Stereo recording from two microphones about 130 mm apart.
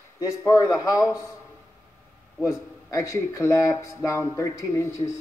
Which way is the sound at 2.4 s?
25° left (ahead or behind).